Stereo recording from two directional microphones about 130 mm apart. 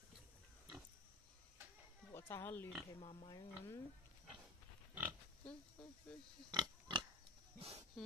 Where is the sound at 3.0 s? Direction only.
45° left (ahead or behind).